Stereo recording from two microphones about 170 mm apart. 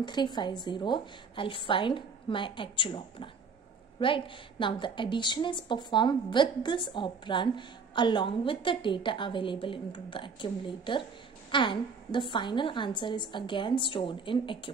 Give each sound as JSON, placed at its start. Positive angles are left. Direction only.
{"t": 0.0, "sound": "a woman's voice", "side_deg": 25}